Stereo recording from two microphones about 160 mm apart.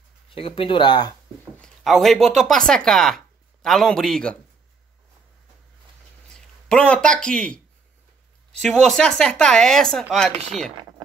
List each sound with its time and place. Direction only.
0.3 s speech: 35° left (ahead or behind)
1.6 s speech: centre (ahead or behind)
6.3 s speech: 5° left (ahead or behind)